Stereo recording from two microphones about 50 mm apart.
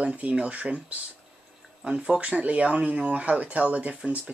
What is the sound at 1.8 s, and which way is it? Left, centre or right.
Speech, centre.